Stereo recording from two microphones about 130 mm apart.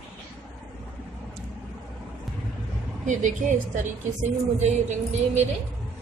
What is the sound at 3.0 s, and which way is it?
A woman's voice, 70° right (ahead or behind).